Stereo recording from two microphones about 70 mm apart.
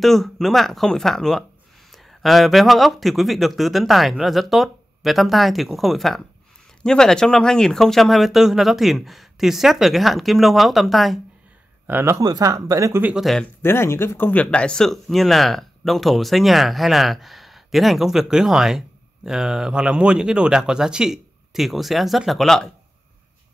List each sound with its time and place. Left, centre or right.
0.0 s speech: centre
11.9 s speech: right
12.2 s speech: right
13.6 s speech: left
14.3 s speech: centre